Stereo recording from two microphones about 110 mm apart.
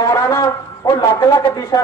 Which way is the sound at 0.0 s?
30° left (ahead or behind).